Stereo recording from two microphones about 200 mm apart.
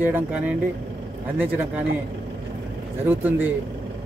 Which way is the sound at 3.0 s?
10° right (ahead or behind).